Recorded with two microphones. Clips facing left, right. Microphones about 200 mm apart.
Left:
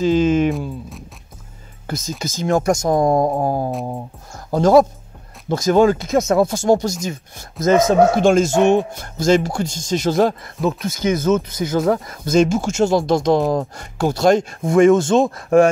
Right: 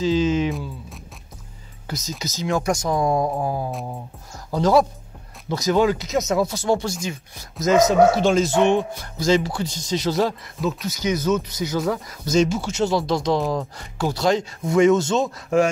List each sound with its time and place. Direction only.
0.0 s speech: 50° left (ahead or behind)
1.9 s speech: 50° left (ahead or behind)